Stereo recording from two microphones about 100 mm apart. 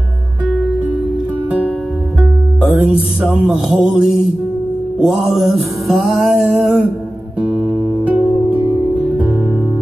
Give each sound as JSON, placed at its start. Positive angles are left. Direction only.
{"t": 2.6, "sound": "music", "side_deg": -15}